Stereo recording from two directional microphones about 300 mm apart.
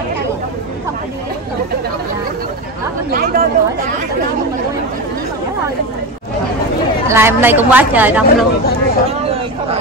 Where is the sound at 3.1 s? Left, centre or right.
Right.